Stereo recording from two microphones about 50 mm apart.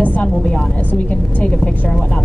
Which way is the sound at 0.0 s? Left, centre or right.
Left.